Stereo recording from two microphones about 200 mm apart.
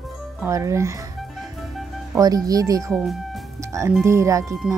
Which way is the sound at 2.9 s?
Centre (ahead or behind).